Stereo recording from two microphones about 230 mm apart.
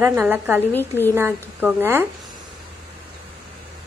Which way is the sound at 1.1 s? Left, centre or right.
Centre.